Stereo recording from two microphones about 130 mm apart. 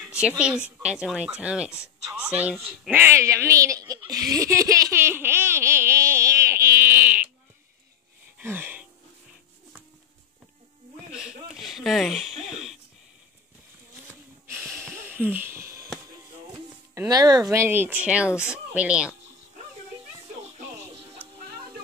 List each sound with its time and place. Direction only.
0.1 s speech: 5° right (ahead or behind)
2.9 s baby laughter: 15° right (ahead or behind)
8.4 s a sound: 15° right (ahead or behind)
11.1 s a sound: 5° right (ahead or behind)
14.5 s snort: 15° right (ahead or behind)
17.1 s speech: 30° right (ahead or behind); by 19.1 s 10° right (ahead or behind)